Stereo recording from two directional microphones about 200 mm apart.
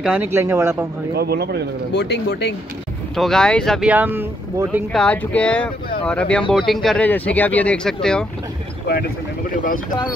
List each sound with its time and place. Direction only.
0.0 s speech: 10° right (ahead or behind)
1.1 s speech: 50° right (ahead or behind)
1.9 s speech: 55° left (ahead or behind)
3.2 s speech: 5° left (ahead or behind)
4.9 s speech: 5° left (ahead or behind)